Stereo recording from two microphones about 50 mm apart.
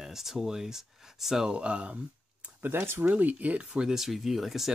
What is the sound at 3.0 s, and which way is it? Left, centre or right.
Speech, right.